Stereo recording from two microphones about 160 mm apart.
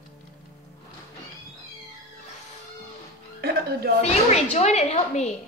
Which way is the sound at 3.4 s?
75° right (ahead or behind).